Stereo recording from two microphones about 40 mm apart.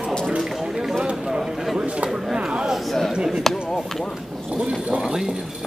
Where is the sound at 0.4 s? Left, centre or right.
Centre.